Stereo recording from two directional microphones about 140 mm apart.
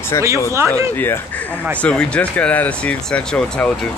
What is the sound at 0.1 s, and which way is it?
Speech, 25° left (ahead or behind).